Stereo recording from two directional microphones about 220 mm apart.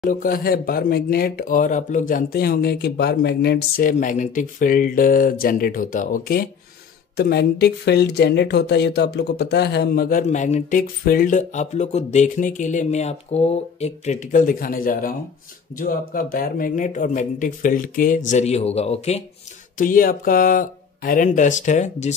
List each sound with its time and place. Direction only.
0.0 s speech: 40° left (ahead or behind)